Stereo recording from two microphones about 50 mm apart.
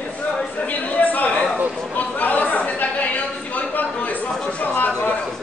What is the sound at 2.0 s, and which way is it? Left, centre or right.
Chatter, left.